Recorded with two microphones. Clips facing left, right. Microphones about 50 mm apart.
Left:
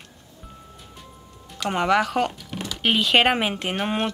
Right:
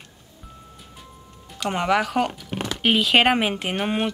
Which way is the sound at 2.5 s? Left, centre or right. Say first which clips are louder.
Right 4 dB; right.